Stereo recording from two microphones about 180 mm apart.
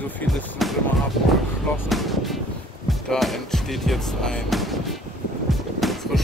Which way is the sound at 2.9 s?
Centre (ahead or behind).